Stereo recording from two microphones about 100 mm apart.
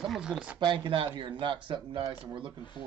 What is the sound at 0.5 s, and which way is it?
Speech, 50° right (ahead or behind).